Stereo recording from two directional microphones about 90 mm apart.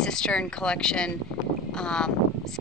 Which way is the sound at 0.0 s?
10° left (ahead or behind).